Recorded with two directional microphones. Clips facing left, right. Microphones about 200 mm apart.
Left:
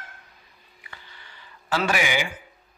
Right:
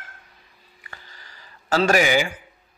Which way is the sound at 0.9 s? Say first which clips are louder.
Right 2 dB; 40° right (ahead or behind).